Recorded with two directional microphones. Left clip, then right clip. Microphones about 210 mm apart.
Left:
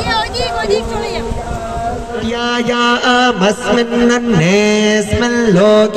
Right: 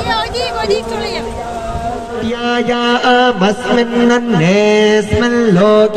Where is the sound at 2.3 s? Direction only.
60° left (ahead or behind).